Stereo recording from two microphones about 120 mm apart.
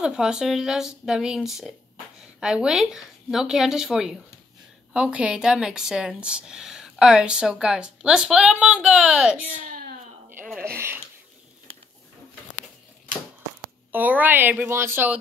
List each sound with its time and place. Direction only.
0.0 s speech: 5° right (ahead or behind)
10.6 s speech: 20° right (ahead or behind)
13.9 s speech: 15° right (ahead or behind)